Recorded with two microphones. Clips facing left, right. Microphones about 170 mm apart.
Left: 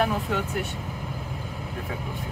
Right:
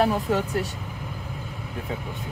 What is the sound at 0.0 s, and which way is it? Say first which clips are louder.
Speech: right 3 dB; 35° right (ahead or behind).